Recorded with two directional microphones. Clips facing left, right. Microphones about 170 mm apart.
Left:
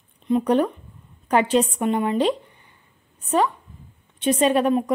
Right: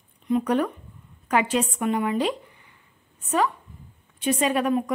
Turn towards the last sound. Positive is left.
turn(degrees=30)  # may be behind; listen again after turning